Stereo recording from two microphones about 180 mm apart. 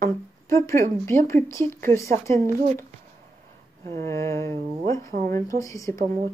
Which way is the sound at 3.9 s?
15° left (ahead or behind).